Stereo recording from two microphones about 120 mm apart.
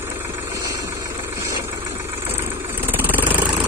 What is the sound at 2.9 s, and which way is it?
Vehicle, 15° right (ahead or behind).